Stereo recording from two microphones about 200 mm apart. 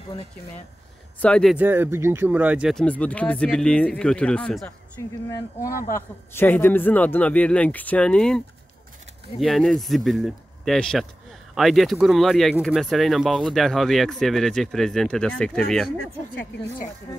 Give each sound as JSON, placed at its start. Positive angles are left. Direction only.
{"t": 1.2, "sound": "speech", "side_deg": 5}
{"t": 5.3, "sound": "speech", "side_deg": 15}
{"t": 9.4, "sound": "speech", "side_deg": 0}
{"t": 16.5, "sound": "speech", "side_deg": 50}